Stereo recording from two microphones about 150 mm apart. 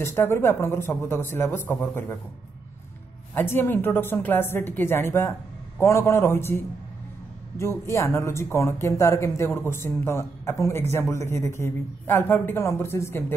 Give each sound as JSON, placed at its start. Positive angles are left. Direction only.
{"t": 0.0, "sound": "speech", "side_deg": 15}
{"t": 3.3, "sound": "speech", "side_deg": 15}